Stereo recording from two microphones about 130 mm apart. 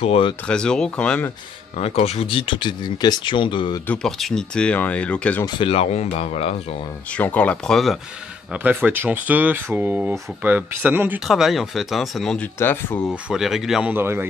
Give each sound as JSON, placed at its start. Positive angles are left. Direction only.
{"t": 0.0, "sound": "speech", "side_deg": 50}
{"t": 0.5, "sound": "speech", "side_deg": 5}
{"t": 1.8, "sound": "speech", "side_deg": 50}
{"t": 3.8, "sound": "speech", "side_deg": 10}
{"t": 5.6, "sound": "speech", "side_deg": 50}
{"t": 7.1, "sound": "speech", "side_deg": 10}
{"t": 8.6, "sound": "speech", "side_deg": -15}
{"t": 11.2, "sound": "speech", "side_deg": 0}
{"t": 12.5, "sound": "speech", "side_deg": 15}
{"t": 13.1, "sound": "speech", "side_deg": -5}
{"t": 13.9, "sound": "speech", "side_deg": -15}